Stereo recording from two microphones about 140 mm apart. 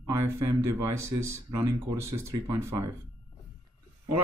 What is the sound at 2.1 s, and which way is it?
Speech, 20° right (ahead or behind).